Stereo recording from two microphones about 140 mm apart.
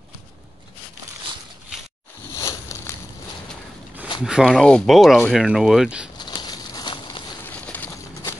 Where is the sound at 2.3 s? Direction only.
20° left (ahead or behind).